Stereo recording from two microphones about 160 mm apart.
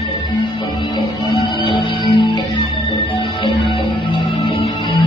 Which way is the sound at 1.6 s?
30° left (ahead or behind).